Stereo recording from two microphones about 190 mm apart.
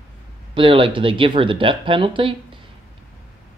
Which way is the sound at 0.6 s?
30° right (ahead or behind).